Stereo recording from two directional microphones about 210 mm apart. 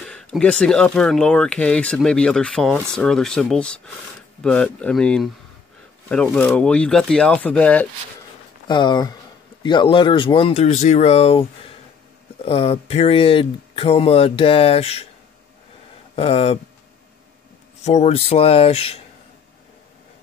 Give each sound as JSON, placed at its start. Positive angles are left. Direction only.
{"t": 0.0, "sound": "speech", "side_deg": 5}
{"t": 8.6, "sound": "speech", "side_deg": 20}
{"t": 12.4, "sound": "speech", "side_deg": 30}
{"t": 16.2, "sound": "speech", "side_deg": 30}
{"t": 17.8, "sound": "speech", "side_deg": 30}